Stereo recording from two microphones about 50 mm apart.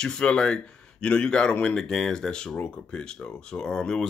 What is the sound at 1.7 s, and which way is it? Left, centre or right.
Speech, centre.